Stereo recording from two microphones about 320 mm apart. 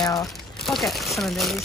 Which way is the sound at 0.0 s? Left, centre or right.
Centre.